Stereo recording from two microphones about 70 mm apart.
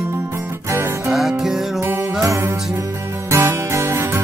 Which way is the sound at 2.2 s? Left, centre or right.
Right.